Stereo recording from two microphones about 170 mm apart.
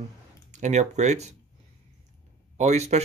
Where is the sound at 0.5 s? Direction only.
45° right (ahead or behind).